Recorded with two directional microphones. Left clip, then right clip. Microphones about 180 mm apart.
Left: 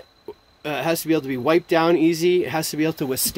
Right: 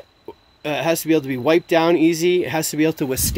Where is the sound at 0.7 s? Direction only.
20° right (ahead or behind).